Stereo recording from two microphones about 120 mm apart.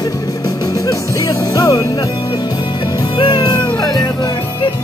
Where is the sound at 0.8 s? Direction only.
30° left (ahead or behind).